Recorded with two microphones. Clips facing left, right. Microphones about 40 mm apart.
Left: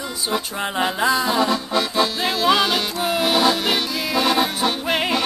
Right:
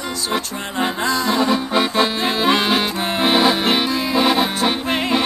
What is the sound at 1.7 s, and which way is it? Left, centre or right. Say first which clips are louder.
Music: right 3 dB; right.